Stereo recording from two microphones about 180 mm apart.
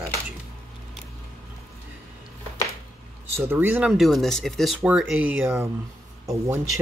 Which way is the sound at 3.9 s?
Centre (ahead or behind).